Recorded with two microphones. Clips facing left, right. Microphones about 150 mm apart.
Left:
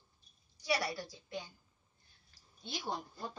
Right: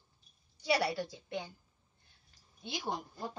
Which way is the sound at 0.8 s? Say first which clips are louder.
Right 5 dB; 65° right (ahead or behind).